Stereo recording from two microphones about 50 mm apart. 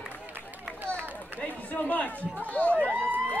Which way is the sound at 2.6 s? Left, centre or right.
Left.